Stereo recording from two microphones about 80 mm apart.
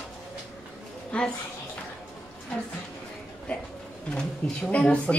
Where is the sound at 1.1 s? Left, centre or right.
Centre.